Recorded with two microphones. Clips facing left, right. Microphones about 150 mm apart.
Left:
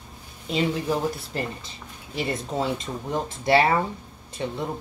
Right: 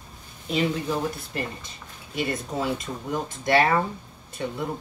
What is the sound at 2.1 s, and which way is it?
Speech, 25° left (ahead or behind).